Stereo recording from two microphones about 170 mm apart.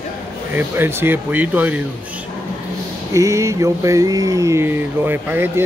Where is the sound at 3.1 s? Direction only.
20° right (ahead or behind).